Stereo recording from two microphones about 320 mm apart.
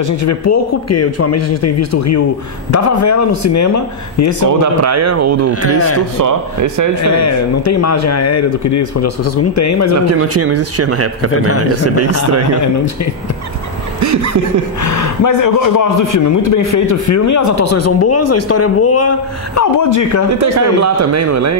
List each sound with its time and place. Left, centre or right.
0.0 s a man's voice: left
4.5 s speech: right
5.5 s a man's voice: left
6.1 s a man's voice: right
7.0 s a man's voice: left
10.1 s speech: right
11.3 s a man's voice: left
11.8 s speech: right
13.9 s snicker: right
14.8 s a man's voice: left
20.5 s a man's voice: right